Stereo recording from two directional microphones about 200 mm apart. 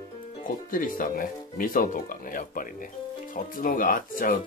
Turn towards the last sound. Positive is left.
turn(degrees=45)  # may be behind; listen again after turning